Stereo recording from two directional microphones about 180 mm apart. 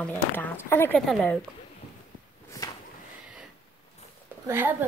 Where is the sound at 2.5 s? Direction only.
20° left (ahead or behind).